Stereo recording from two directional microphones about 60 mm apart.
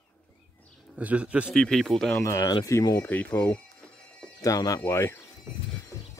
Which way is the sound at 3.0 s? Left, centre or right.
Left.